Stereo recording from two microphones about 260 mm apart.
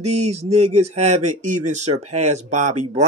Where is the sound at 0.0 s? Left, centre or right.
Right.